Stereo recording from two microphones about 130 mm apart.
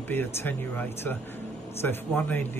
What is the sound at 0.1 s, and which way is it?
A man's voice, 15° left (ahead or behind).